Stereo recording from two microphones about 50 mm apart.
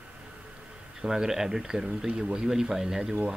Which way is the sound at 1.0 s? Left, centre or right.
Centre.